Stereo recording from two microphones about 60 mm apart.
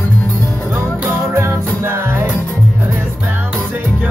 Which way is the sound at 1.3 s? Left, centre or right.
Right.